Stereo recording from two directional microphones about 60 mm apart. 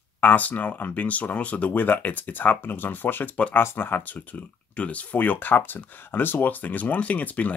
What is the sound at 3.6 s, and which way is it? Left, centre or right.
Speech, left.